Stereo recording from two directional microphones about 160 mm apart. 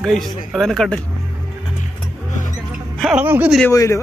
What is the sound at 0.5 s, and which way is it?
Speech, centre (ahead or behind).